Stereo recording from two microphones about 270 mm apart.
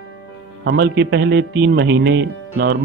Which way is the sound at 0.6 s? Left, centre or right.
Right.